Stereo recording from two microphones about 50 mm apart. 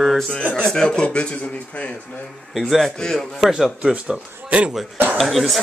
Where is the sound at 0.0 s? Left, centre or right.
Centre.